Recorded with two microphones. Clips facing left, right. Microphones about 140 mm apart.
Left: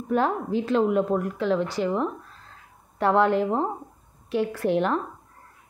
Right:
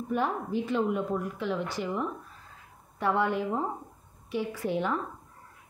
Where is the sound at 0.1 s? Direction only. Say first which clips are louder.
Left 6 dB; 90° left.